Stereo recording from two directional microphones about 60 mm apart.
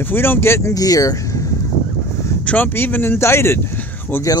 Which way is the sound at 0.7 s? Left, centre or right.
Left.